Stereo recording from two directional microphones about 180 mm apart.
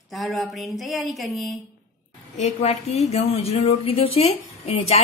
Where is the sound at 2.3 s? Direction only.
40° left (ahead or behind).